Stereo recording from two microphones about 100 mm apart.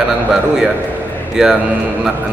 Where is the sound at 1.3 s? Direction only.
5° right (ahead or behind).